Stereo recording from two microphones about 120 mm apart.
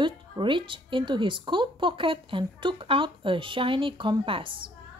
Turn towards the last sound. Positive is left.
turn(degrees=-45)  # may be behind; listen again after turning